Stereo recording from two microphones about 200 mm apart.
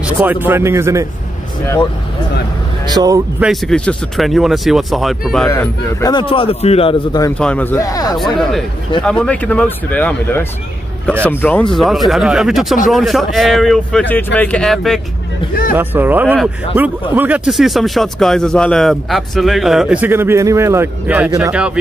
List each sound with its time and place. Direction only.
0.0 s speech: 10° right (ahead or behind)
2.9 s speech: 20° right (ahead or behind)
3.3 s speech: centre (ahead or behind)
5.5 s a man's voice: 15° left (ahead or behind)
7.3 s speech: 5° left (ahead or behind)
8.2 s speech: centre (ahead or behind)
15.7 s speech: 10° right (ahead or behind)